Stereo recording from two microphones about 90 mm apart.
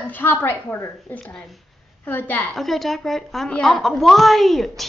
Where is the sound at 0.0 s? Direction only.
20° left (ahead or behind).